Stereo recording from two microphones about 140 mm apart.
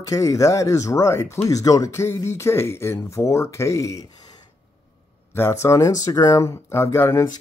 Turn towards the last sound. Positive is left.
turn(degrees=15)  # may be behind; listen again after turning